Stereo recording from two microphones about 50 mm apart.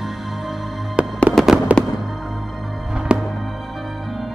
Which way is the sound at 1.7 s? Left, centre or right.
Right.